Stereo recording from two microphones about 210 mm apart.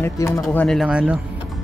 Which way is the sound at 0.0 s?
15° left (ahead or behind).